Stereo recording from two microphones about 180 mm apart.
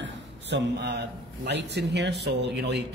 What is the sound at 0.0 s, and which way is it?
A man's voice, 75° right (ahead or behind).